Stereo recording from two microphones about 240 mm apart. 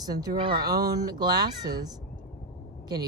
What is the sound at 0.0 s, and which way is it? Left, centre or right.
Speech, centre.